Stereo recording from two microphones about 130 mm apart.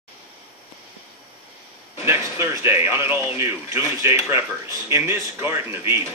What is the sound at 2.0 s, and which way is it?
Speech, 20° right (ahead or behind).